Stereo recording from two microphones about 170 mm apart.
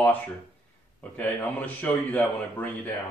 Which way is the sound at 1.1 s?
10° left (ahead or behind).